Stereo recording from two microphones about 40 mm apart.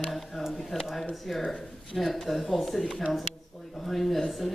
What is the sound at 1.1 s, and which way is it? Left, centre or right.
A man's voice, centre.